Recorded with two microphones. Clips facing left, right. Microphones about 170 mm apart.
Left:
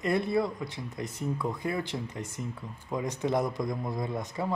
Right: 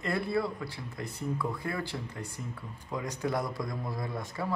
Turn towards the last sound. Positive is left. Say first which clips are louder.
# left 3 dB
turn(degrees=20)  # may be behind; listen again after turning